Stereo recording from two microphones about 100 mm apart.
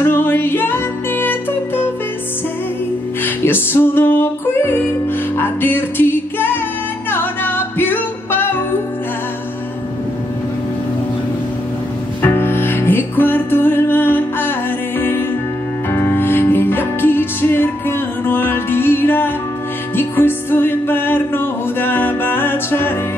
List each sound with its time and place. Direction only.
0.0 s music: 25° left (ahead or behind)
3.3 s music: 20° left (ahead or behind)
12.2 s music: 20° left (ahead or behind)